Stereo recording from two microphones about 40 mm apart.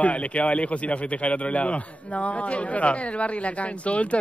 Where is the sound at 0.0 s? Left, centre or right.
Left.